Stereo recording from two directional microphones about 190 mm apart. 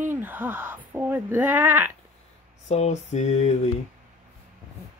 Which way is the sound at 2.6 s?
35° left (ahead or behind).